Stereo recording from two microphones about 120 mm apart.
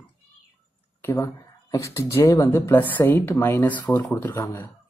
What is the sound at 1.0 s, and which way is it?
Speech, 20° left (ahead or behind).